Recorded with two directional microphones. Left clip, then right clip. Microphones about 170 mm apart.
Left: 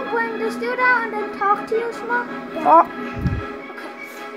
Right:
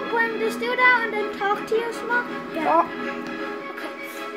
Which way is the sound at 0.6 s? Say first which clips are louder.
Even; 20° right (ahead or behind).